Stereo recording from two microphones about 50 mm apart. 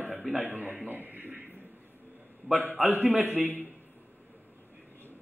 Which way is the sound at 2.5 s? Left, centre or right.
Right.